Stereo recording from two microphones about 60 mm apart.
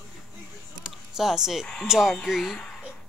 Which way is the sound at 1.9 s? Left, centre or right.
Centre.